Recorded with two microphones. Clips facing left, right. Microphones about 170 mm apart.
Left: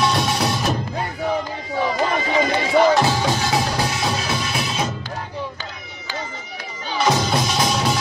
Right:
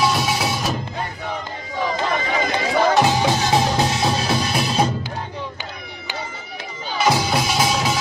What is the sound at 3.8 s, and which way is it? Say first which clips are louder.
Music: right 3 dB; 30° right (ahead or behind).